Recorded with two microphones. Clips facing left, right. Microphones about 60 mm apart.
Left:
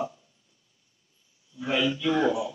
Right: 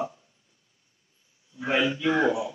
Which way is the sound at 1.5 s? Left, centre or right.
Right.